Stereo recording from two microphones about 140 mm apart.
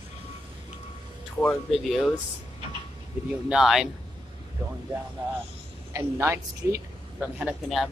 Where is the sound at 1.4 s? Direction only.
5° left (ahead or behind).